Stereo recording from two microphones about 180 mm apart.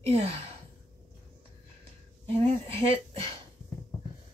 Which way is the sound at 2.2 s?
30° right (ahead or behind).